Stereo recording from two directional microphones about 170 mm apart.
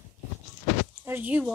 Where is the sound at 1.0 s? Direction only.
10° right (ahead or behind).